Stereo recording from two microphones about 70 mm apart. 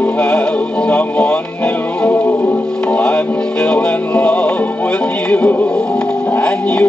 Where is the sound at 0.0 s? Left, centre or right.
Centre.